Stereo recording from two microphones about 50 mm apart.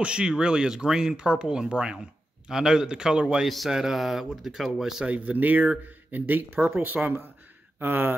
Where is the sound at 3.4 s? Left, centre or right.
Centre.